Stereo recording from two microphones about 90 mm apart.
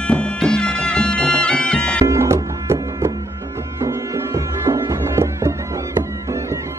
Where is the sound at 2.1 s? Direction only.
30° right (ahead or behind).